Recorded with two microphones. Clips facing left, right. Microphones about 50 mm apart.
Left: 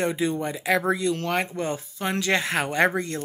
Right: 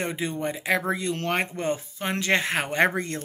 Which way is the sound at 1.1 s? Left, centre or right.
Right.